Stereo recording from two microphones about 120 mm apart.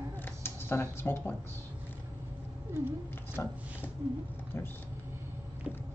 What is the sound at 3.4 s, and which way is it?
Speech, 20° left (ahead or behind).